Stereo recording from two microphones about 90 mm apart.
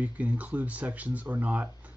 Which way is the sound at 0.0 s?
15° right (ahead or behind).